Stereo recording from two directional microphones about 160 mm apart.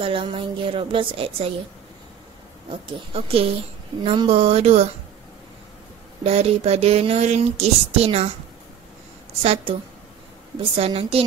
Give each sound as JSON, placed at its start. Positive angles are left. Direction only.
{"t": 0.0, "sound": "speech", "side_deg": -35}
{"t": 2.7, "sound": "speech", "side_deg": -35}
{"t": 6.2, "sound": "speech", "side_deg": -40}
{"t": 9.4, "sound": "speech", "side_deg": -40}
{"t": 10.8, "sound": "speech", "side_deg": -35}